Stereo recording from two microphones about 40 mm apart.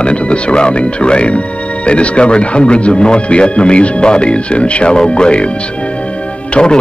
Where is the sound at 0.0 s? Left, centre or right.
Left.